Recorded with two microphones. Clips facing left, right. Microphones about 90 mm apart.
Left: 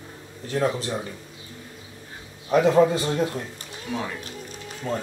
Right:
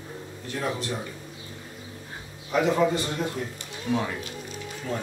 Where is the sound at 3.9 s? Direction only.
Centre (ahead or behind).